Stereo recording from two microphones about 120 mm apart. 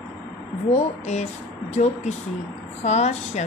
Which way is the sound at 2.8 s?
65° left (ahead or behind).